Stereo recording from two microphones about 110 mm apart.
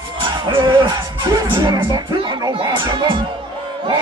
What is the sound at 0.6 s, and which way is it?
Speech, 45° right (ahead or behind).